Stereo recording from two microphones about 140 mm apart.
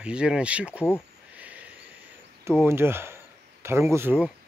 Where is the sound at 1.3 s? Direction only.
10° right (ahead or behind).